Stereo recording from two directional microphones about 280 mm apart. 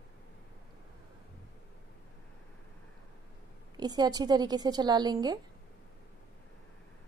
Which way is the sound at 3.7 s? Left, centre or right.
Centre.